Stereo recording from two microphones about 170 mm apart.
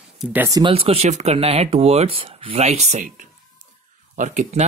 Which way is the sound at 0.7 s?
35° right (ahead or behind).